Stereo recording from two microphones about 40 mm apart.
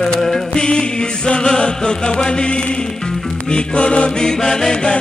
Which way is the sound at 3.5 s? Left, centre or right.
Left.